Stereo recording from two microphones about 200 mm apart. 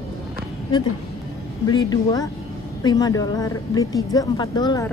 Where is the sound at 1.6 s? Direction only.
20° left (ahead or behind).